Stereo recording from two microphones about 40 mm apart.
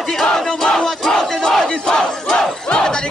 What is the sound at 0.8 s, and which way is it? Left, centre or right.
Crowd, centre.